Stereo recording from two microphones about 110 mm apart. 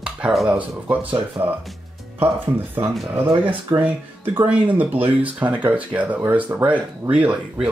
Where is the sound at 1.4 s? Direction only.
20° right (ahead or behind).